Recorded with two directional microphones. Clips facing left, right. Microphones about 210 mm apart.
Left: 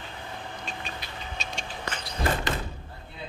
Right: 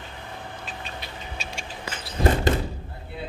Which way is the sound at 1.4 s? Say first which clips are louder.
Left 1 dB; 10° right (ahead or behind).